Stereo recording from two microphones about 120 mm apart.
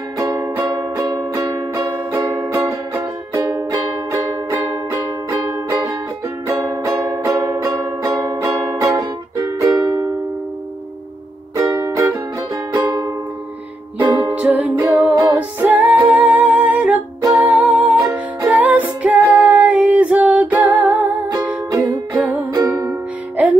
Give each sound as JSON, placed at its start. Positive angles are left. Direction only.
{"t": 0.2, "sound": "music", "side_deg": -25}
{"t": 11.5, "sound": "music", "side_deg": -25}
{"t": 13.9, "sound": "music", "side_deg": -15}
{"t": 23.3, "sound": "music", "side_deg": -10}